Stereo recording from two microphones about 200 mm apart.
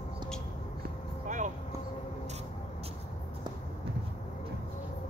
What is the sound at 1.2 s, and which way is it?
Vehicle, 40° right (ahead or behind).